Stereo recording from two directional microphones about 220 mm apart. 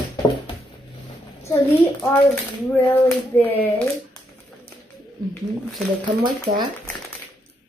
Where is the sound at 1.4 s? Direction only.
10° left (ahead or behind).